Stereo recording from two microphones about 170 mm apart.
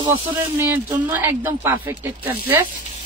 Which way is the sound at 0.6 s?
15° right (ahead or behind).